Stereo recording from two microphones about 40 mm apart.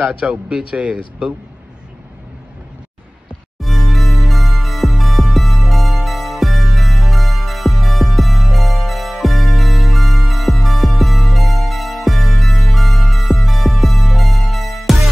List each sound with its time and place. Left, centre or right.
0.2 s speech: right
3.6 s music: centre